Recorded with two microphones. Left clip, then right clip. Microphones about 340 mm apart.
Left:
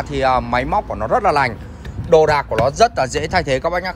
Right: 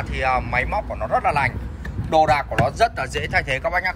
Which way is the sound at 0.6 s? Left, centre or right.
Left.